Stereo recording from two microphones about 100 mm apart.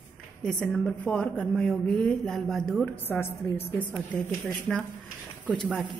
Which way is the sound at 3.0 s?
25° left (ahead or behind).